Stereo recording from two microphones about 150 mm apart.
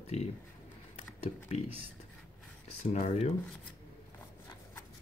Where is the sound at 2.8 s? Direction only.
45° left (ahead or behind).